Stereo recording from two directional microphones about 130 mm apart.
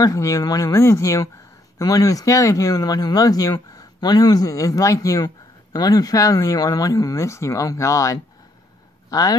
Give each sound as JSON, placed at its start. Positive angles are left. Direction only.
{"t": 0.0, "sound": "speech", "side_deg": 25}